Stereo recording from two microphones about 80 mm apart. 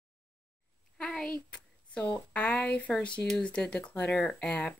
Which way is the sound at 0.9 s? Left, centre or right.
Centre.